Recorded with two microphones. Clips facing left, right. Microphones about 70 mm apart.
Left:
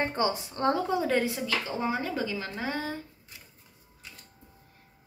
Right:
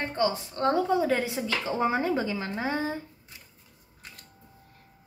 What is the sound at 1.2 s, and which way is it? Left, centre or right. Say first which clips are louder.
Speech: even; right.